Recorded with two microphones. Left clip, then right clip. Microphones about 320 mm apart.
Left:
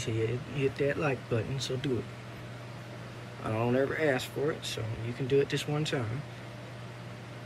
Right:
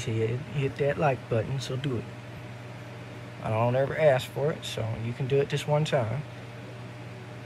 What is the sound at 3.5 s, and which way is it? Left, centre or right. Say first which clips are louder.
Speech: right 3 dB; centre.